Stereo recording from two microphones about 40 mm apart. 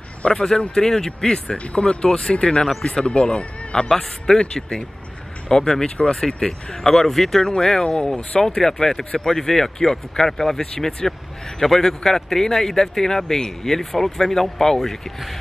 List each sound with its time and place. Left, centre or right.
0.2 s speech: left
0.7 s speech: centre
1.6 s speech: left
3.9 s speech: centre
4.4 s speech: left
5.9 s speech: left
6.1 s speech: centre